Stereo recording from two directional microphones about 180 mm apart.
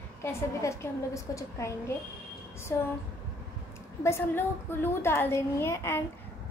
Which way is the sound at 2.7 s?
15° left (ahead or behind).